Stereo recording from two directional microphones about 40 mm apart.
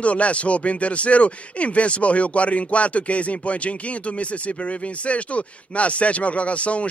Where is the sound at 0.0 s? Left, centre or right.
Left.